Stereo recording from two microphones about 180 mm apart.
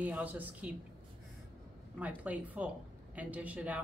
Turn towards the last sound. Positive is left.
turn(degrees=-10)  # may be behind; listen again after turning